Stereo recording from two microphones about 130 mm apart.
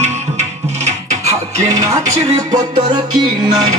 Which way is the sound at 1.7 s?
25° right (ahead or behind).